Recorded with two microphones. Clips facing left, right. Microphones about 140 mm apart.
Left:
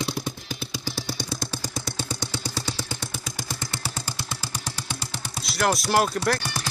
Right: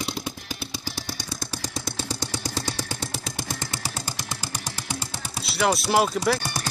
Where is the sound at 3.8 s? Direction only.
10° right (ahead or behind).